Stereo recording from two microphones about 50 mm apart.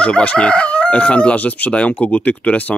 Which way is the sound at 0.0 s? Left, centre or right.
Left.